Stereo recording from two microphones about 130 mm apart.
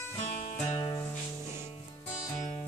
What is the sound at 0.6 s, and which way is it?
Music, 50° left (ahead or behind).